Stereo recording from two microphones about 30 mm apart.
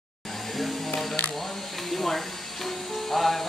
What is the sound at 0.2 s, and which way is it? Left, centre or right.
Music, centre.